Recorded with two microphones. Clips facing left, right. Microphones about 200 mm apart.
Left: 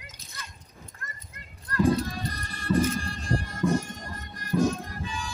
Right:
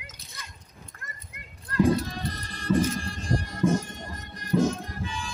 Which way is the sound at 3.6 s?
15° right (ahead or behind).